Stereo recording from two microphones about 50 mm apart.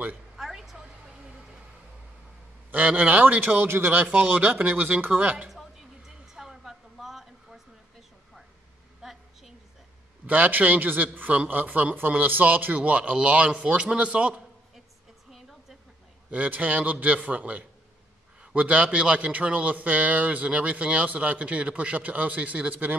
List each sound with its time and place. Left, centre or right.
0.4 s a sound: centre
2.7 s a man's voice: right
3.6 s a man's voice: right
4.1 s a man's voice: right
4.4 s speech: right
5.5 s a sound: centre
9.0 s a sound: centre
10.2 s a man's voice: right
16.3 s a man's voice: right